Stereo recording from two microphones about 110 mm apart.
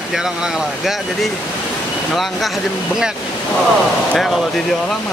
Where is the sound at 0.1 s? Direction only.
5° right (ahead or behind).